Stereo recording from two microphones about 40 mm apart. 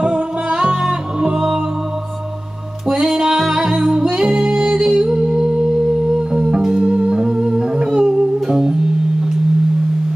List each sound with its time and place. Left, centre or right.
0.0 s music: centre
2.9 s music: centre
6.6 s humming: centre
8.5 s music: centre